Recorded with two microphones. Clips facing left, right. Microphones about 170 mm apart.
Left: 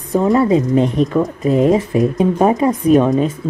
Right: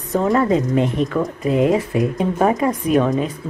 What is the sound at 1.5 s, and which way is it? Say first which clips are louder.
Speech: left 3 dB; 35° left (ahead or behind).